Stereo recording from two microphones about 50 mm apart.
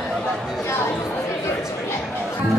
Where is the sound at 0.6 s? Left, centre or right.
Left.